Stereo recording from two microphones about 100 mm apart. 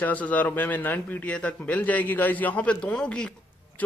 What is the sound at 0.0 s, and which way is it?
A man's voice, 15° left (ahead or behind).